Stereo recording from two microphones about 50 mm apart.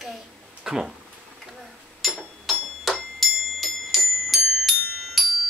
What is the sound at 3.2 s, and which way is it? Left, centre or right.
Music, centre.